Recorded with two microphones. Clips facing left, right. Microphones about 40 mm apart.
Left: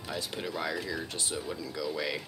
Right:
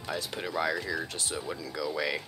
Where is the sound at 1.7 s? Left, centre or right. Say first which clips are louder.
Right 3 dB; right.